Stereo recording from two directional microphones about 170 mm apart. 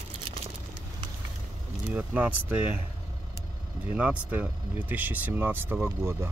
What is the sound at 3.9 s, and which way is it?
Speech, 5° right (ahead or behind).